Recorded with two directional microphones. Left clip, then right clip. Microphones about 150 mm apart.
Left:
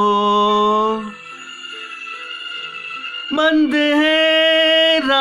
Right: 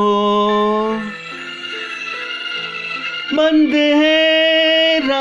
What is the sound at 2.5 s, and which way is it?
Music, 35° right (ahead or behind).